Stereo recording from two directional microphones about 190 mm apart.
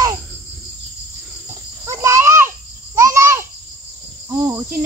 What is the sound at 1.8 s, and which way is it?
Babbling, 15° right (ahead or behind).